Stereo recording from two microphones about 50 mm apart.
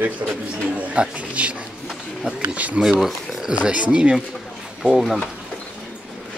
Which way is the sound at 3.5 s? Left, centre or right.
Right.